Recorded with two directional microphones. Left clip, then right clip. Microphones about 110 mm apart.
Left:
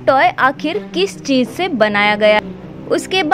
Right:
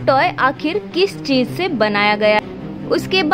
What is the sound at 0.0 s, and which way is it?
A woman's voice, 35° left (ahead or behind).